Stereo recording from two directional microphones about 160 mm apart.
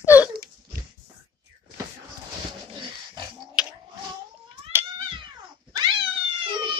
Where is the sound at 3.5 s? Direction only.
5° right (ahead or behind).